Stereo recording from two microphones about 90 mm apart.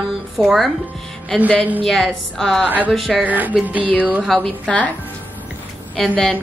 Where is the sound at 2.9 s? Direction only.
Centre (ahead or behind).